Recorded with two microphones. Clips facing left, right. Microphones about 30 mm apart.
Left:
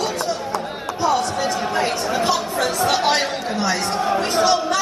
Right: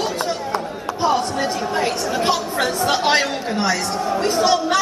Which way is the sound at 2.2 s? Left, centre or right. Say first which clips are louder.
Right 2 dB; right.